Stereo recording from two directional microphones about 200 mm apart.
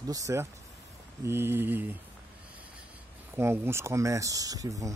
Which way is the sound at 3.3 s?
10° right (ahead or behind).